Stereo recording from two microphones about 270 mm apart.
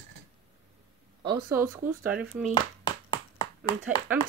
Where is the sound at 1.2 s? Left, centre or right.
Centre.